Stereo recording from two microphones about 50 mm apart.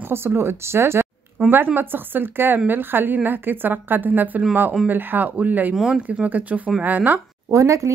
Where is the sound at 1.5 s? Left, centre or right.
Right.